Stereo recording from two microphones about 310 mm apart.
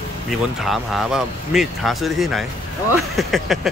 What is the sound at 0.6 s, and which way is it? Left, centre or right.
Speech, centre.